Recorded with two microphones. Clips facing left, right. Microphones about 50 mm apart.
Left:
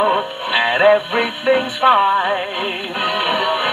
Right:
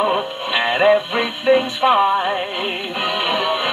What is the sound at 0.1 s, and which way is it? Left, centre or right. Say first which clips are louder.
Music: left 2 dB; centre.